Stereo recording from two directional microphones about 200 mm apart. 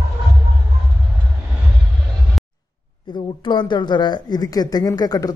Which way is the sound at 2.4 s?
Centre (ahead or behind).